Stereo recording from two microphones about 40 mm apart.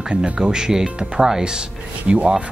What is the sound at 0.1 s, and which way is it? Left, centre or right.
Speech, right.